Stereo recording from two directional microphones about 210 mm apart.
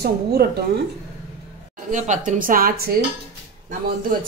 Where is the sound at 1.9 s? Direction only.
35° right (ahead or behind).